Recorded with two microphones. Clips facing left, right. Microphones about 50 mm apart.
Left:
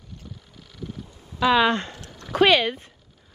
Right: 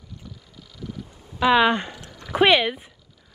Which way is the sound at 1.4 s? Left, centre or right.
Centre.